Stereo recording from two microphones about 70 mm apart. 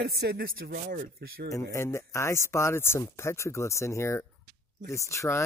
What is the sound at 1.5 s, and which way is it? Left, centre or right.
Speech, left.